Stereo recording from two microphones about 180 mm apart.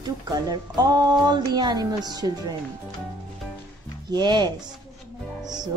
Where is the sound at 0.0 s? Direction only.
20° right (ahead or behind).